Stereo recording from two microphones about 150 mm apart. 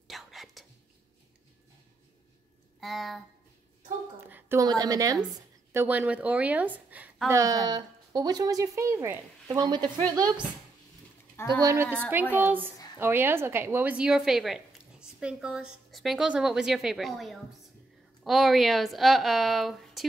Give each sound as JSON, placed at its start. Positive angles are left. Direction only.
{"t": 0.1, "sound": "whispering", "side_deg": 0}
{"t": 2.8, "sound": "a woman's voice", "side_deg": 0}
{"t": 4.3, "sound": "a woman's voice", "side_deg": -15}
{"t": 7.2, "sound": "speech", "side_deg": -20}
{"t": 9.5, "sound": "speech", "side_deg": -30}
{"t": 11.6, "sound": "a woman's voice", "side_deg": -15}